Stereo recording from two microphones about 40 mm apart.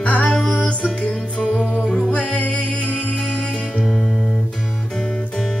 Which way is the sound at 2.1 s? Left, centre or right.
Left.